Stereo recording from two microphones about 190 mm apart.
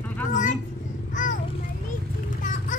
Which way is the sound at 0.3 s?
40° left (ahead or behind).